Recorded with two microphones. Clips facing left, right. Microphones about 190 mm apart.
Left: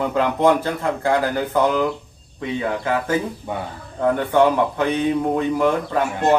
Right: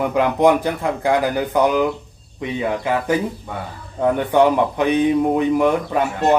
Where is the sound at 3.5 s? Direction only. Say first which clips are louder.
Left 3 dB; 15° left (ahead or behind).